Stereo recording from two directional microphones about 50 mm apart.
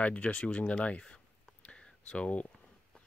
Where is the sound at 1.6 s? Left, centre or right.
Centre.